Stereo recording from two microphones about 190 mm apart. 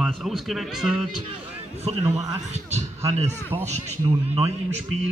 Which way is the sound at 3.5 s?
25° right (ahead or behind).